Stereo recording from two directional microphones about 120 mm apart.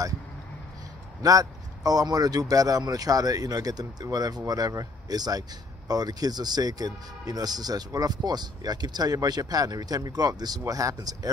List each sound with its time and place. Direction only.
1.2 s speech: 30° right (ahead or behind)